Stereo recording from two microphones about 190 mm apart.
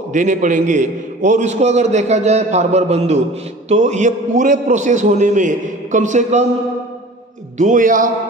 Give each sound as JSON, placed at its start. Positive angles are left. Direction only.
{"t": 0.1, "sound": "a man's voice", "side_deg": -40}
{"t": 7.5, "sound": "a man's voice", "side_deg": -40}